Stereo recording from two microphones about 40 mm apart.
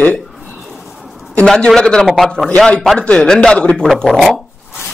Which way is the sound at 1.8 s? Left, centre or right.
Left.